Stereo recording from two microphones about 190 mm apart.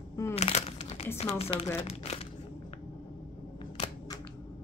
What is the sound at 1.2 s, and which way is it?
Speech, 30° left (ahead or behind).